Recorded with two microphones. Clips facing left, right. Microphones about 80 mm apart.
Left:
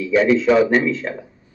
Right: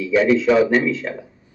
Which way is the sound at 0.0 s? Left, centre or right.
Left.